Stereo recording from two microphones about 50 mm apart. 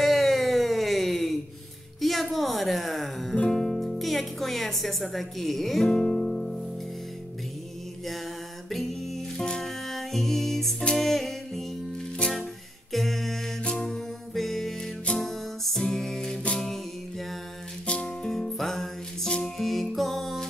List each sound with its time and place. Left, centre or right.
0.0 s a sound: centre
2.0 s music: centre
5.9 s music: centre
8.6 s music: centre
9.4 s music: centre
9.7 s music: centre
12.2 s music: left
12.9 s a sound: centre
13.8 s music: centre
18.0 s music: centre